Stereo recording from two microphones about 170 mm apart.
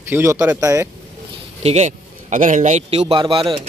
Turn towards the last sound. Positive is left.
turn(degrees=-30)  # may be behind; listen again after turning